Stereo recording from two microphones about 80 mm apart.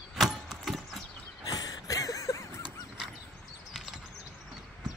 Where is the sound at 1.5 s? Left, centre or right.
Left.